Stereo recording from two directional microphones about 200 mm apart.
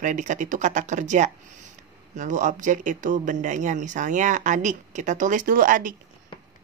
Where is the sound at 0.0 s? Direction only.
35° right (ahead or behind).